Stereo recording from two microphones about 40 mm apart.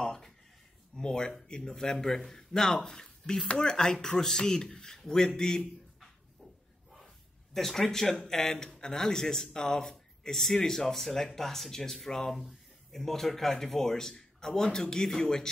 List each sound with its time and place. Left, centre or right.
0.0 s a sound: centre
0.9 s speech: centre
7.5 s speech: centre